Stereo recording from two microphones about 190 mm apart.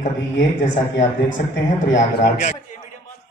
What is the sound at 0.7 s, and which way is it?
A man's voice, 45° left (ahead or behind).